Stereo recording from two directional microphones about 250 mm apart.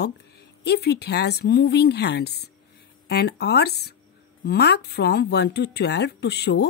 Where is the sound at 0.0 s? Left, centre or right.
Left.